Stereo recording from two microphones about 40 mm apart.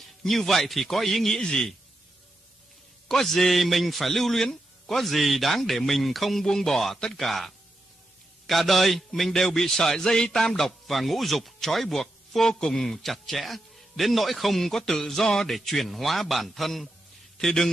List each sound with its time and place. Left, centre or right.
0.2 s speech: centre
1.4 s speech: left
3.1 s speech: centre
6.4 s a man's voice: centre